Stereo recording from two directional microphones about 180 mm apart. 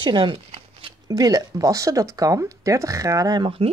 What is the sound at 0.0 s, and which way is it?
Speech, 25° right (ahead or behind).